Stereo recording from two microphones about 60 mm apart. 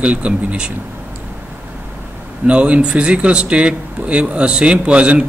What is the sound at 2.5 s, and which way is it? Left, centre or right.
Speech, right.